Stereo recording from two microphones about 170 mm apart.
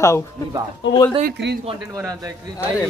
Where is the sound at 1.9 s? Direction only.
20° right (ahead or behind).